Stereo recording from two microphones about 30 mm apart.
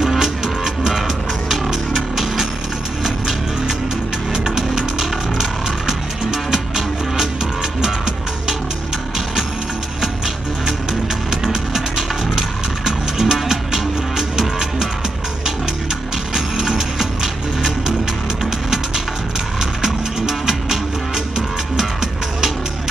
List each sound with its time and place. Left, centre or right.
1.7 s music: centre
4.3 s music: right
5.4 s music: centre
12.4 s music: centre
16.6 s music: centre
19.8 s music: centre